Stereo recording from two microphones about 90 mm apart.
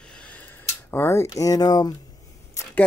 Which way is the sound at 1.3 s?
45° left (ahead or behind).